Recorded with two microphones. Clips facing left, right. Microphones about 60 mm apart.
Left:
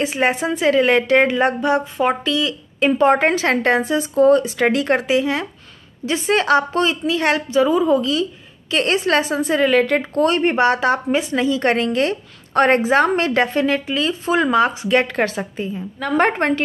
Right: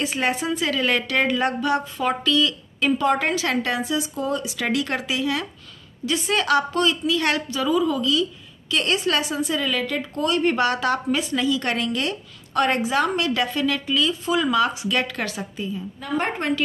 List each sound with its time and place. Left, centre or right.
0.0 s a woman's voice: left
16.0 s a woman's voice: left